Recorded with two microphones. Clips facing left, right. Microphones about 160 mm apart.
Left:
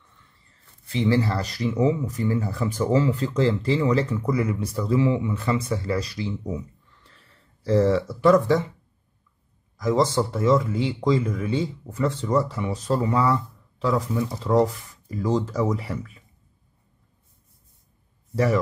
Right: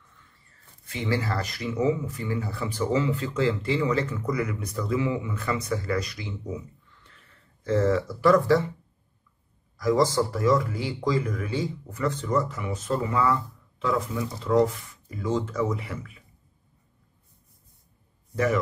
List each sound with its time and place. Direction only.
0.8 s speech: 30° left (ahead or behind)
7.0 s a sound: 35° left (ahead or behind)
9.8 s speech: 25° left (ahead or behind)
18.3 s speech: 35° left (ahead or behind)